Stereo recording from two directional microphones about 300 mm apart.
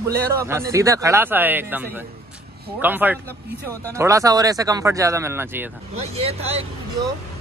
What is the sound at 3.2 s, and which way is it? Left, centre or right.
Speech, centre.